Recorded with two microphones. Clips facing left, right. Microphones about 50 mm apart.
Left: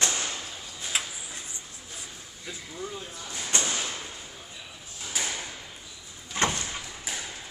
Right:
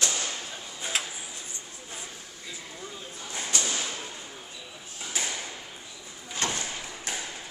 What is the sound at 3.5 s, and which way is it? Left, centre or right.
Whip, left.